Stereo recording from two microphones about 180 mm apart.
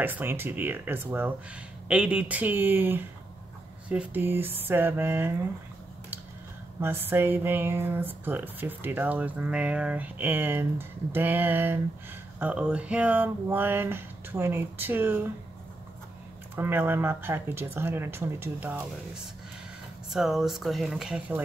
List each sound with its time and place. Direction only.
0.0 s speech: 10° right (ahead or behind)
6.8 s speech: 10° right (ahead or behind)
16.5 s speech: 10° right (ahead or behind)
20.1 s speech: centre (ahead or behind)